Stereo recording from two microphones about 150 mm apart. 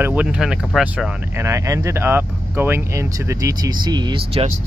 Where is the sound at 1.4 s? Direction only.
20° right (ahead or behind).